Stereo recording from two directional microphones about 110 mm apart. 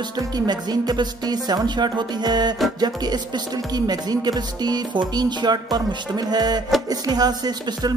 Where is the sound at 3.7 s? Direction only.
35° right (ahead or behind).